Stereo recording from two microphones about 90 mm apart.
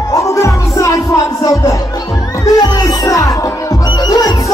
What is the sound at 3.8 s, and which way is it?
Music, 50° left (ahead or behind).